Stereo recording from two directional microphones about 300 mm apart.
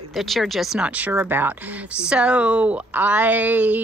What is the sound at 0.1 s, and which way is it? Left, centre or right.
Speech, centre.